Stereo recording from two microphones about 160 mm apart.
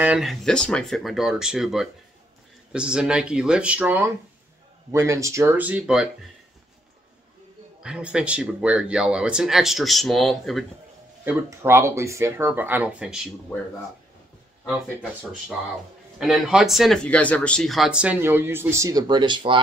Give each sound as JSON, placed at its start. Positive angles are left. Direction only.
{"t": 0.0, "sound": "speech", "side_deg": -5}
{"t": 7.8, "sound": "speech", "side_deg": -5}
{"t": 11.2, "sound": "speech", "side_deg": -15}
{"t": 16.2, "sound": "speech", "side_deg": -5}